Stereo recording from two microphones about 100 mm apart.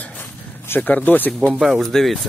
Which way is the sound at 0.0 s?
20° left (ahead or behind).